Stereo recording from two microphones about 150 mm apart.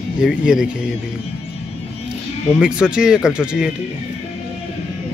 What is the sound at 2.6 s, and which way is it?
A man's voice, 5° right (ahead or behind).